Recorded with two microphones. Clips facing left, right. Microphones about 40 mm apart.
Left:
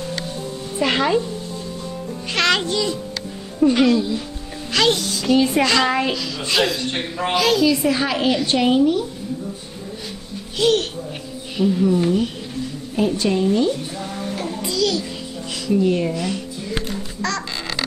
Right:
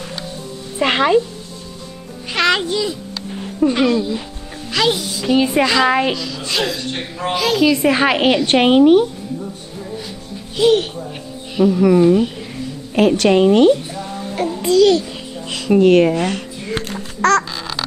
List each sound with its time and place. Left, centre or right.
0.7 s speech: right
2.3 s speech: centre
6.1 s a woman's voice: centre
6.9 s a man's voice: centre
7.3 s a woman's voice: centre
7.8 s a woman's voice: right
10.6 s speech: centre
11.5 s speech: centre
12.9 s a woman's voice: right
14.6 s a child's voice: right
15.5 s speech: right
16.2 s music: right
16.9 s quack: right